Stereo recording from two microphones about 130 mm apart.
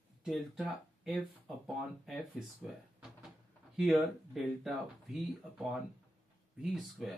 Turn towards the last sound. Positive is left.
turn(degrees=0)  # may be behind; listen again after turning